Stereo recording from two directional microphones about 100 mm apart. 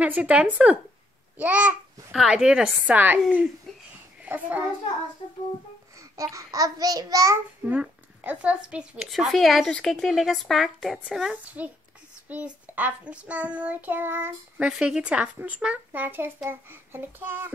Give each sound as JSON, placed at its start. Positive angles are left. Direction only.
{"t": 0.0, "sound": "child singing", "side_deg": -15}
{"t": 2.1, "sound": "a woman's voice", "side_deg": -5}
{"t": 2.9, "sound": "child singing", "side_deg": -15}
{"t": 3.7, "sound": "a sound", "side_deg": 0}
{"t": 4.2, "sound": "a child's voice", "side_deg": -15}
{"t": 5.9, "sound": "a child's voice", "side_deg": -35}
{"t": 7.6, "sound": "speech", "side_deg": -15}
{"t": 9.1, "sound": "a woman's voice", "side_deg": 0}
{"t": 11.4, "sound": "child singing", "side_deg": -15}
{"t": 14.7, "sound": "child singing", "side_deg": -5}
{"t": 16.4, "sound": "a child's voice", "side_deg": -20}